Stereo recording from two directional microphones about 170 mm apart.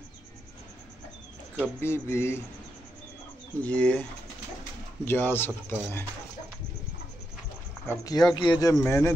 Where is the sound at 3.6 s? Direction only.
5° left (ahead or behind).